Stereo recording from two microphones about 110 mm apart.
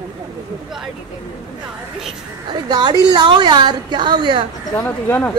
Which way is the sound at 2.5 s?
45° right (ahead or behind).